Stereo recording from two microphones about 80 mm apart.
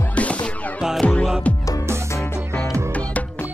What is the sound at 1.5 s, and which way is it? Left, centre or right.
Music, centre.